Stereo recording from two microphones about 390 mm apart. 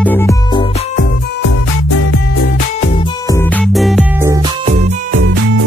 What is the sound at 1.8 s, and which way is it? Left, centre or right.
Music, left.